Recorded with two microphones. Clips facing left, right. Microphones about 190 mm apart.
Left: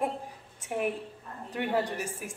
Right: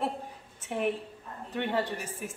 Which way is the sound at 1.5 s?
10° left (ahead or behind).